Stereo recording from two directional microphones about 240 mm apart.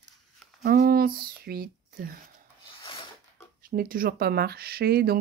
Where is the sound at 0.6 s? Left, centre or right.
Right.